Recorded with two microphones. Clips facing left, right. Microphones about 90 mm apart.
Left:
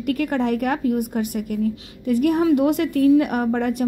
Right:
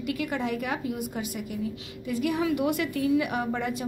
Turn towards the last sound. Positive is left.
turn(degrees=60)  # may be behind; listen again after turning